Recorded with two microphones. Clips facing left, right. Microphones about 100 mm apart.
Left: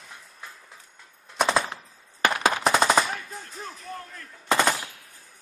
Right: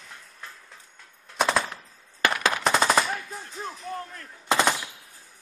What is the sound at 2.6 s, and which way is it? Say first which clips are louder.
Machine gun: even; centre (ahead or behind).